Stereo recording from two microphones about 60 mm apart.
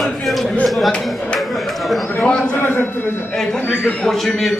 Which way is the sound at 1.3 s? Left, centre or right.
Centre.